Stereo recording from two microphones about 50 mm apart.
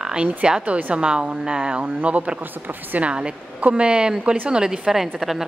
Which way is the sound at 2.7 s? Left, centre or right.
Right.